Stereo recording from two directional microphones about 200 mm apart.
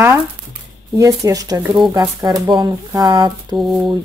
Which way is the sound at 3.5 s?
Centre (ahead or behind).